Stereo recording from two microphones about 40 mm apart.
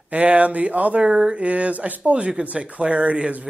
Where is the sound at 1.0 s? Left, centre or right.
Right.